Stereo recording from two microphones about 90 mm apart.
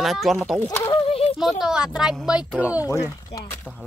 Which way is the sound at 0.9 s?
90° left.